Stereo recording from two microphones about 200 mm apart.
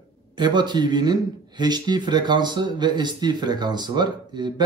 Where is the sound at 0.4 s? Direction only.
20° right (ahead or behind).